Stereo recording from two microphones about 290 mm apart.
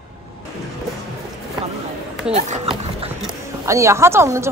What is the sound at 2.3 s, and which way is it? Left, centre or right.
Speech, right.